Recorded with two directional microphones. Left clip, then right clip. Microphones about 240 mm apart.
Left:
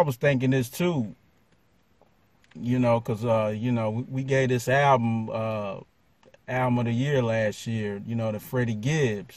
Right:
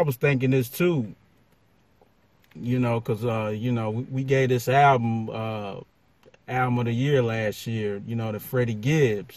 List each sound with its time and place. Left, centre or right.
0.0 s speech: centre
2.5 s a man's voice: centre